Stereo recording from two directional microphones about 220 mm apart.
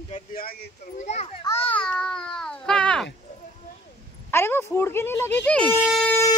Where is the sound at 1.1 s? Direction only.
30° left (ahead or behind).